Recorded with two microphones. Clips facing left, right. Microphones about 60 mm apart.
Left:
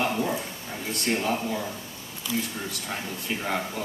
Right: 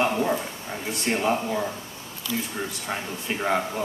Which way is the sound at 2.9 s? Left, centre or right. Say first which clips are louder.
Right 1 dB; right.